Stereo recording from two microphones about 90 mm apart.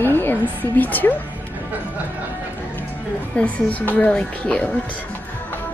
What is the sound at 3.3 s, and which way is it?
A woman's voice, 15° left (ahead or behind).